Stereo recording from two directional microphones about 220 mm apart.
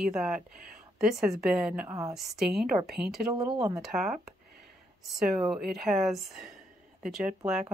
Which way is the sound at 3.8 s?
Centre (ahead or behind).